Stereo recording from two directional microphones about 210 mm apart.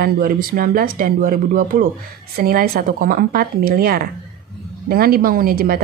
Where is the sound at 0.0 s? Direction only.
45° right (ahead or behind).